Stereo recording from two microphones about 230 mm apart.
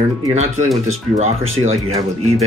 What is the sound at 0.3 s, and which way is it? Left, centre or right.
Speech, right.